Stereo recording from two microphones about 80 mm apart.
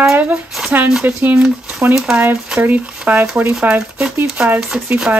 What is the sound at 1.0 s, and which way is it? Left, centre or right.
Speech, right.